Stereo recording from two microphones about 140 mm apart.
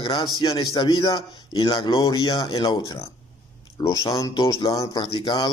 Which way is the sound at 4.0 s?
25° left (ahead or behind).